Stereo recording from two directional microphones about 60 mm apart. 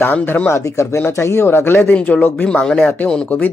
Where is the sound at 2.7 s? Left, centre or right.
Left.